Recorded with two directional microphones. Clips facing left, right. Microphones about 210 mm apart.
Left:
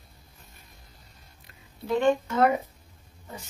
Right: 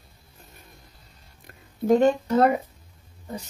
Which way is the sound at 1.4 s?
45° right (ahead or behind).